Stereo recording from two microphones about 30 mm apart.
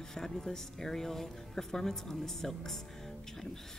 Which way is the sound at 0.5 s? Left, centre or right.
Centre.